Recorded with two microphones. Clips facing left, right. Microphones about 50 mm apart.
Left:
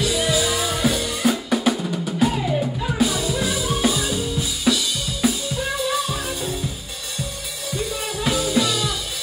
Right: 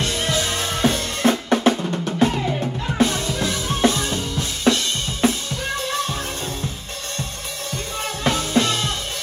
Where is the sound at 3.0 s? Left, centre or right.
Centre.